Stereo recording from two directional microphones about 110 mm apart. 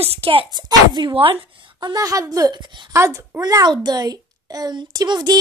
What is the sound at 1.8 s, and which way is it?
A woman's voice, 35° right (ahead or behind).